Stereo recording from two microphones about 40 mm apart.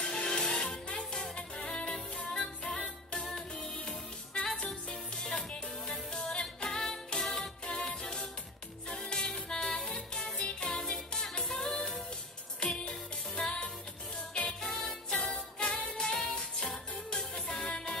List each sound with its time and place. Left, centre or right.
0.0 s music: left
12.6 s music: left